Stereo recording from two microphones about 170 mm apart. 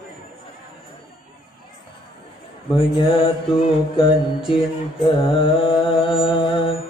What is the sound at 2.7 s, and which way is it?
Mantra, 30° left (ahead or behind).